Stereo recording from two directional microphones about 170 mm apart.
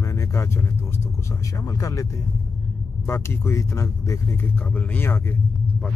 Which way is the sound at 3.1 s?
15° left (ahead or behind).